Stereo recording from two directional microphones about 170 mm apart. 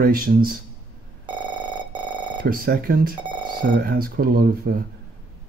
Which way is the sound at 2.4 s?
60° right (ahead or behind).